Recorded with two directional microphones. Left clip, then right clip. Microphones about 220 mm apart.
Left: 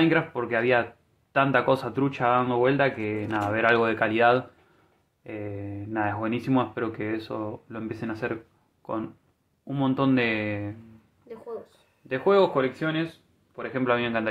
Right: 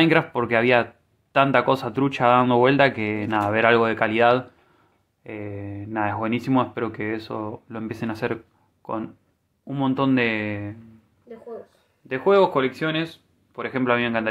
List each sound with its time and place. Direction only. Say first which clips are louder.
0.0 s speech: right 4 dB; 25° right (ahead or behind)
12.1 s speech: right 3 dB; 10° right (ahead or behind)
12.5 s speech: right 3 dB; 25° right (ahead or behind)